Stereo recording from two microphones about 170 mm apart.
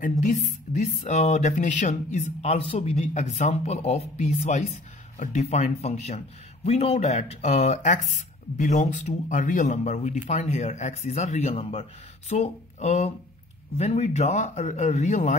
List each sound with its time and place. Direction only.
0.0 s a man's voice: 45° left (ahead or behind)